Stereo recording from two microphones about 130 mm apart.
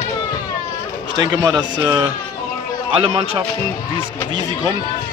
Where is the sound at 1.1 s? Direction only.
35° right (ahead or behind).